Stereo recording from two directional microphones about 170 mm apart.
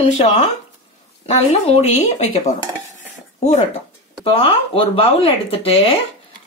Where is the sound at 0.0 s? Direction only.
40° left (ahead or behind).